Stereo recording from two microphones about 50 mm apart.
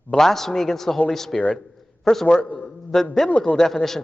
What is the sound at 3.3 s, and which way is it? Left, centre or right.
Speech, left.